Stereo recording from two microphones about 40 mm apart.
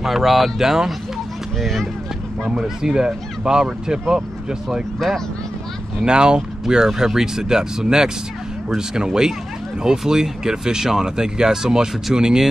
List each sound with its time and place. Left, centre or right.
0.0 s speech: centre
1.6 s speech: centre
2.5 s speech: centre
6.0 s speech: right